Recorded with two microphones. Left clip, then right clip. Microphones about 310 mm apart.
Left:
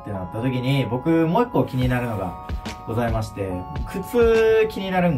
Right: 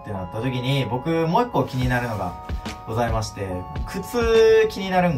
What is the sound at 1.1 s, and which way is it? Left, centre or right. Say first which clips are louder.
Speech: left 1 dB; centre.